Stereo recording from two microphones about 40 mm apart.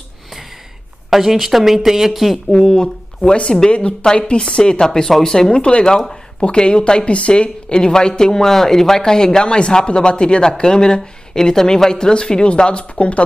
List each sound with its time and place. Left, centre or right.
1.1 s speech: centre
2.5 s speech: centre
4.3 s speech: left
5.5 s speech: left